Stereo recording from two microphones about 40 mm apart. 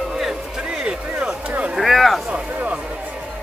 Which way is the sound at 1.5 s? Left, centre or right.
Right.